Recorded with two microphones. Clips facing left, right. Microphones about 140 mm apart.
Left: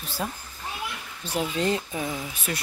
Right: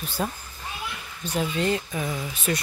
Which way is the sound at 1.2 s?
30° left (ahead or behind).